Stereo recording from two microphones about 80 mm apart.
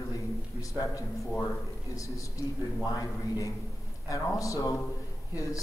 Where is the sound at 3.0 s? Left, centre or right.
Left.